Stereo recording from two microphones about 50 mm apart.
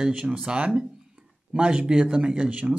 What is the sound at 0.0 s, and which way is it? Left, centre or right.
Speech, centre.